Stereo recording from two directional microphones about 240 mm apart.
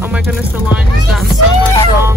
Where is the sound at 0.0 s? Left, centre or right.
Centre.